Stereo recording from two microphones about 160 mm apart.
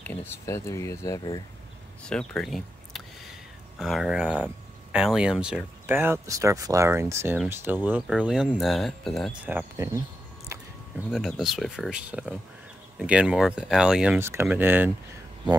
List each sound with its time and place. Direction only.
0.0 s speech: 10° left (ahead or behind)
2.0 s speech: 5° left (ahead or behind)
9.4 s speech: 10° right (ahead or behind)
11.1 s speech: centre (ahead or behind)